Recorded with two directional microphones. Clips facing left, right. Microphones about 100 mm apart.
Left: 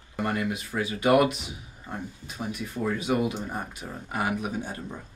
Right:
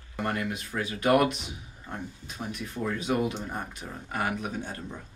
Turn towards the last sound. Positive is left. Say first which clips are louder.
# left 2 dB
turn(degrees=10)  # may be behind; listen again after turning